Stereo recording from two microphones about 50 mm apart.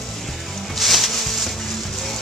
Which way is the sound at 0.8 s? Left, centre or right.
Centre.